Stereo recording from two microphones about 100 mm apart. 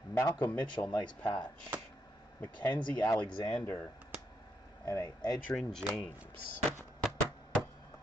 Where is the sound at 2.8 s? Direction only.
10° left (ahead or behind).